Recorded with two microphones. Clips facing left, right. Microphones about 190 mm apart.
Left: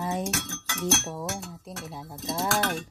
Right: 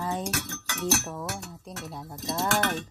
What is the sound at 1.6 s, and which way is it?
Speech, centre (ahead or behind).